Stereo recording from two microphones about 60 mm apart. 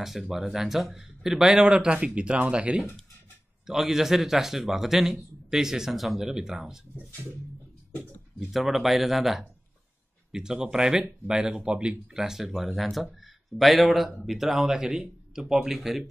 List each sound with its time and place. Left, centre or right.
0.0 s speech: centre
3.6 s a man's voice: centre
8.4 s a man's voice: centre